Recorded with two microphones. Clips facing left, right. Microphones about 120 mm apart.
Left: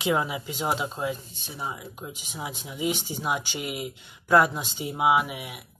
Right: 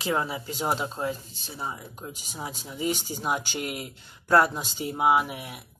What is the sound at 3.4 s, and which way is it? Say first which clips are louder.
Speech: right 1 dB; 45° right (ahead or behind).